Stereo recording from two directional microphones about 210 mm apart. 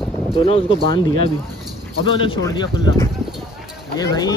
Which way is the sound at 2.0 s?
25° left (ahead or behind).